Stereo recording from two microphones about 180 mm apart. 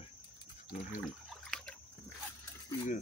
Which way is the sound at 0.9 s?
Centre (ahead or behind).